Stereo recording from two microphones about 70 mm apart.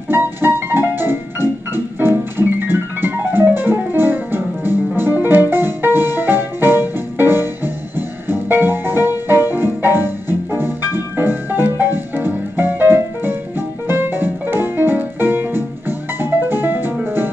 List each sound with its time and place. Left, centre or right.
0.1 s music: right
2.0 s keyboard: right
8.3 s music: right